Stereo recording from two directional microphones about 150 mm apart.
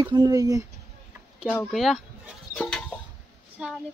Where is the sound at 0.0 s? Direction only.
25° right (ahead or behind).